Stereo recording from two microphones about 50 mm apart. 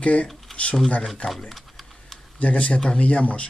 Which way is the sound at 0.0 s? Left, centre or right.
Left.